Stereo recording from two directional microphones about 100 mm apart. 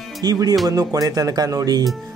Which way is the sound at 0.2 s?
40° right (ahead or behind).